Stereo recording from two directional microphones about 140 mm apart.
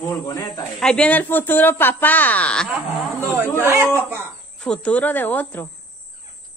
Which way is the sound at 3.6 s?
20° right (ahead or behind).